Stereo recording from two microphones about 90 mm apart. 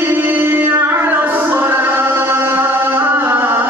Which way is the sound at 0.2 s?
25° right (ahead or behind).